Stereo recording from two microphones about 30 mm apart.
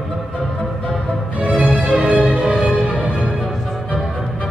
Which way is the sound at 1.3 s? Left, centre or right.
Right.